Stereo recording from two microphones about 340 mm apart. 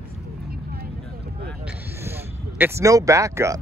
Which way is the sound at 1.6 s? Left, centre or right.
Centre.